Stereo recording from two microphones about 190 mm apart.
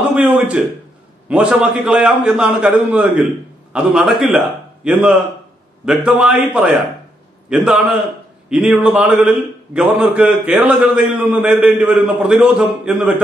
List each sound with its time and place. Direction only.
0.1 s a man's voice: 5° right (ahead or behind)